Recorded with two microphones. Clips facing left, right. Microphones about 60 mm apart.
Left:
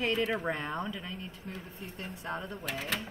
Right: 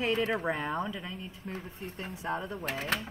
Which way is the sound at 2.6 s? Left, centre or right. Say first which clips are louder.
Right 3 dB; right.